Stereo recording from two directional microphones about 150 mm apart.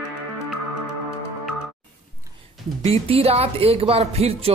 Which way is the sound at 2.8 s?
40° right (ahead or behind).